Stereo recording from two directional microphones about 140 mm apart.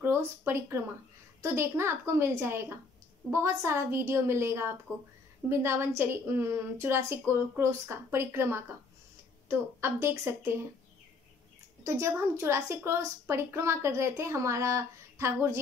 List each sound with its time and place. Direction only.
0.0 s a woman's voice: 15° right (ahead or behind)
11.8 s a woman's voice: 20° right (ahead or behind)